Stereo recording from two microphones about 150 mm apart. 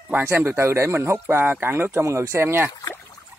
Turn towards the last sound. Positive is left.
turn(degrees=20)  # may be behind; listen again after turning